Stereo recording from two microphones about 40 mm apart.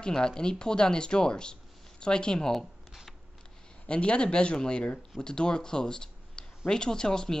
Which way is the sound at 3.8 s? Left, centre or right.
Left.